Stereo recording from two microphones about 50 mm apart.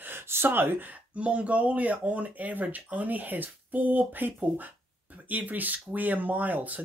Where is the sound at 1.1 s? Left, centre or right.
Right.